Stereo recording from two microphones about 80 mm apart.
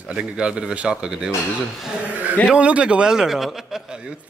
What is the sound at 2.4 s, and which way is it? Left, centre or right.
Speech, centre.